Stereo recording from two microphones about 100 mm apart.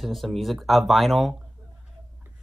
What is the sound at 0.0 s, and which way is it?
Speech, centre (ahead or behind).